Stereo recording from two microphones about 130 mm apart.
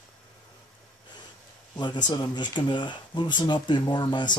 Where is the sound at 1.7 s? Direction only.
35° left (ahead or behind).